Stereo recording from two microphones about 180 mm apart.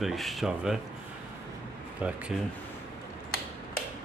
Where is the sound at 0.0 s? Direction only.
Centre (ahead or behind).